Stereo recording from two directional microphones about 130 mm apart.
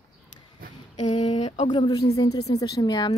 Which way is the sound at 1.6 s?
35° left (ahead or behind).